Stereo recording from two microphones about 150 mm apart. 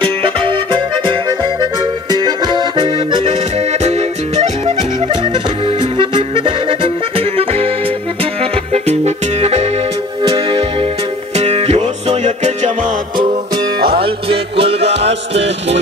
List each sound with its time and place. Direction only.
0.0 s accordion: 35° right (ahead or behind)
3.5 s music: 45° right (ahead or behind)
5.0 s music: 30° right (ahead or behind)
10.2 s music: 35° right (ahead or behind); by 12.7 s 50° right (ahead or behind)
13.2 s music: 35° right (ahead or behind)